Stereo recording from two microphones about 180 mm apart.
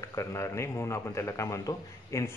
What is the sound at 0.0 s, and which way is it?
A man's voice, 20° left (ahead or behind).